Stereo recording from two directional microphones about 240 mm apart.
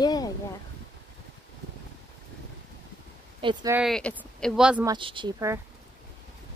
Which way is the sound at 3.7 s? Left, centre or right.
Centre.